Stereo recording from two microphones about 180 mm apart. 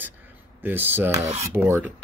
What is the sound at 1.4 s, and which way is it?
Speech, 15° right (ahead or behind).